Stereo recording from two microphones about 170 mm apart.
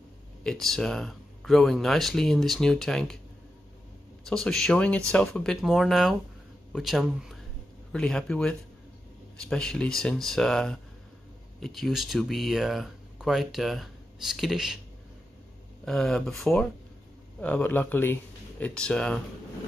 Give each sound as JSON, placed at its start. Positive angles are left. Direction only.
{"t": 0.4, "sound": "speech", "side_deg": 0}
{"t": 4.2, "sound": "speech", "side_deg": 5}
{"t": 15.8, "sound": "speech", "side_deg": 0}
{"t": 17.4, "sound": "speech", "side_deg": 10}